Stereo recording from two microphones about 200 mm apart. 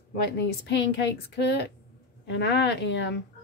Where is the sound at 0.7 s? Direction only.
55° left (ahead or behind).